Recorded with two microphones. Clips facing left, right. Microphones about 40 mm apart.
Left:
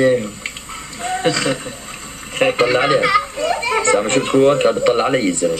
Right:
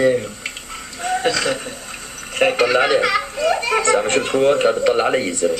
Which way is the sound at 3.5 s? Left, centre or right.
Left.